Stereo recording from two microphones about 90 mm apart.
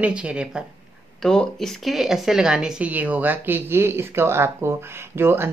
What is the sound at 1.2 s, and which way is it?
Speech, 5° left (ahead or behind).